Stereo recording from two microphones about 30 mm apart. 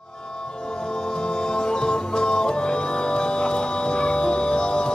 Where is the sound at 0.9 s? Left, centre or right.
Left.